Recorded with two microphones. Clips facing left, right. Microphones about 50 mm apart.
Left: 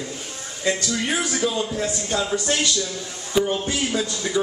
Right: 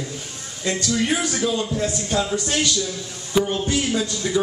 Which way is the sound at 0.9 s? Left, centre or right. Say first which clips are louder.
Right 2 dB; centre.